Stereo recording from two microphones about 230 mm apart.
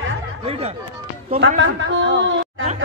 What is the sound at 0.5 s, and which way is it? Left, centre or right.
Speech, right.